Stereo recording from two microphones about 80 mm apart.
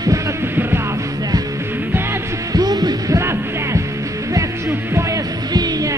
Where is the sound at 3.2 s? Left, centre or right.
Right.